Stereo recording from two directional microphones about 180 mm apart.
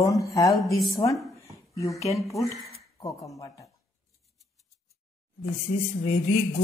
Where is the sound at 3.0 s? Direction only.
20° left (ahead or behind).